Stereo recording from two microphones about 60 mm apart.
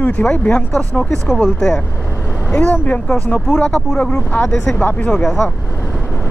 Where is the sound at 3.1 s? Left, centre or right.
Centre.